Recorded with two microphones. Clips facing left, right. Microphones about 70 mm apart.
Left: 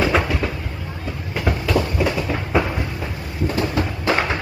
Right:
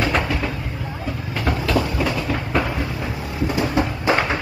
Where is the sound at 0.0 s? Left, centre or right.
Centre.